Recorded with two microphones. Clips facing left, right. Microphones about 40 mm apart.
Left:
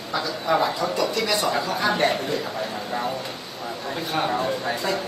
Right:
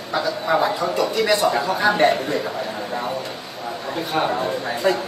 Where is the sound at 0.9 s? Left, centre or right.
Right.